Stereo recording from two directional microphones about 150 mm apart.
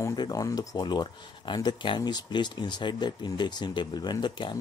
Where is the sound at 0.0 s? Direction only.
25° left (ahead or behind).